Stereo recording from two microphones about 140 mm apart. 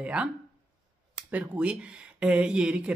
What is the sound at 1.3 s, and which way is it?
Speech, 10° right (ahead or behind).